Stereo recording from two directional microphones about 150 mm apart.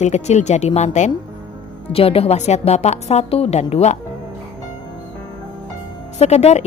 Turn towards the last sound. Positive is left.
turn(degrees=45)  # may be behind; listen again after turning